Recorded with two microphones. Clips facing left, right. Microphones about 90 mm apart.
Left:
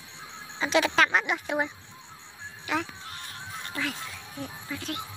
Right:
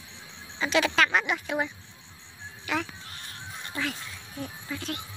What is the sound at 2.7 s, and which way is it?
Speech, 25° left (ahead or behind).